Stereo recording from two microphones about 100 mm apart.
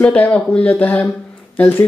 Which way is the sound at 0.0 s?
10° left (ahead or behind).